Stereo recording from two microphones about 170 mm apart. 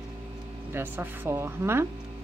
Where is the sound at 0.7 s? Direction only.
15° right (ahead or behind).